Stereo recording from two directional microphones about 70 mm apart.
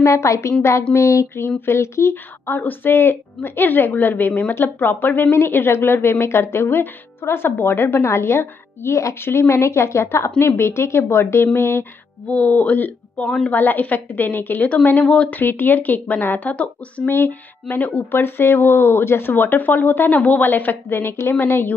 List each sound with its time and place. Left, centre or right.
0.0 s a woman's voice: left
12.3 s speech: left
17.1 s speech: left
18.2 s a woman's voice: left